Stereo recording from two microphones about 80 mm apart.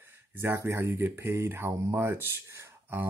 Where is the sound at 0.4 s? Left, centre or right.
Right.